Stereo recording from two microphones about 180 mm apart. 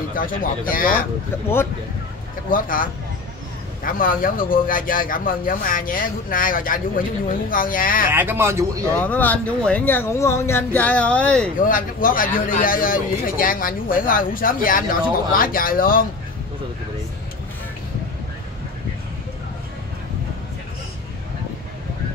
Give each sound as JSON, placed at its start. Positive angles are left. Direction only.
{"t": 0.1, "sound": "a man's voice", "side_deg": 50}
{"t": 2.5, "sound": "a man's voice", "side_deg": 50}
{"t": 8.1, "sound": "speech", "side_deg": -10}
{"t": 8.9, "sound": "speech", "side_deg": 10}
{"t": 11.5, "sound": "a man's voice", "side_deg": 50}